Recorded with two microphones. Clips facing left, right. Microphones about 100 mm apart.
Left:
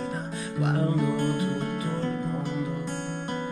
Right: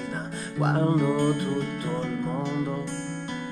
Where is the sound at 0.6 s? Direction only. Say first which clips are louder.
Right 3 dB; 45° right (ahead or behind).